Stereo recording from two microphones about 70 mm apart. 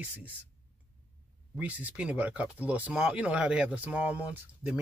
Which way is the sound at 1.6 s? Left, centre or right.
Right.